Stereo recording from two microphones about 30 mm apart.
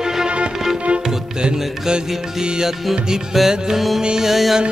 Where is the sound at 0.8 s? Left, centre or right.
Right.